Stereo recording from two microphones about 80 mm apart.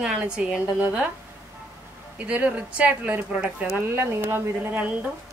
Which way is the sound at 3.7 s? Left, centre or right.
Right.